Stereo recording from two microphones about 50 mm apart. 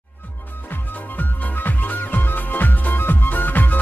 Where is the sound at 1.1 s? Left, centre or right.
Left.